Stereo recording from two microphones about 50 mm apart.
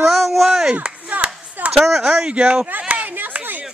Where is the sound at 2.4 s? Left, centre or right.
Right.